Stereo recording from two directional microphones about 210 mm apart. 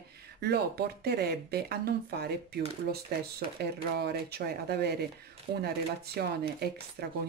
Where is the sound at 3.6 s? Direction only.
50° right (ahead or behind).